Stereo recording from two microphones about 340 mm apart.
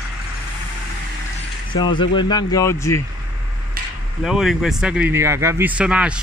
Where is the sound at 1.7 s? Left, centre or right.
Centre.